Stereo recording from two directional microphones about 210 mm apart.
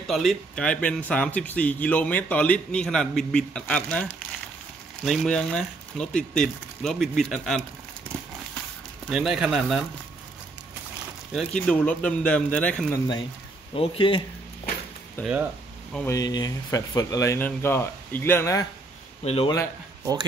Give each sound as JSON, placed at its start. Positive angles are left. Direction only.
{"t": 0.0, "sound": "speech", "side_deg": 0}
{"t": 9.1, "sound": "speech", "side_deg": -5}
{"t": 11.3, "sound": "speech", "side_deg": 5}
{"t": 13.7, "sound": "speech", "side_deg": 25}
{"t": 15.2, "sound": "speech", "side_deg": 10}
{"t": 19.2, "sound": "speech", "side_deg": 25}